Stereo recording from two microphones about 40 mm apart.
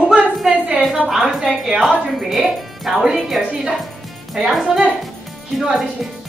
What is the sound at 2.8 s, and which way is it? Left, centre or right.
A woman's voice, centre.